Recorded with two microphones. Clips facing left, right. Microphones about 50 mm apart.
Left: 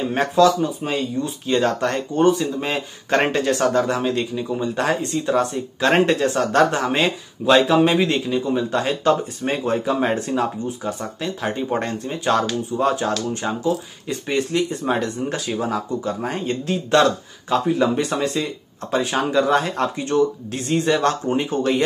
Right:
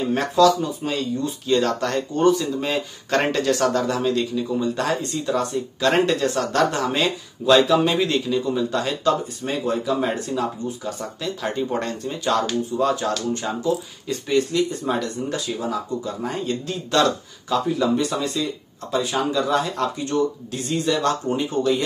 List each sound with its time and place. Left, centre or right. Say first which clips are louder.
0.1 s speech: left 1 dB; left